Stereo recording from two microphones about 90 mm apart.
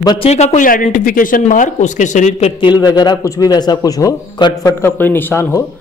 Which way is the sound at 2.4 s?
65° left (ahead or behind).